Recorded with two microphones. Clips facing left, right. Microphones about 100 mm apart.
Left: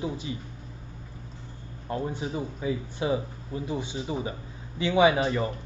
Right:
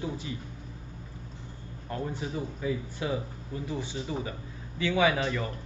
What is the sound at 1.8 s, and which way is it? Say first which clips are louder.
Speech: left 3 dB; 15° left (ahead or behind).